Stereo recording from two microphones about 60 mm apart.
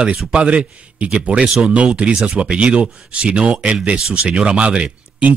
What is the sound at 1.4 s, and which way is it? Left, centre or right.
Speech, centre.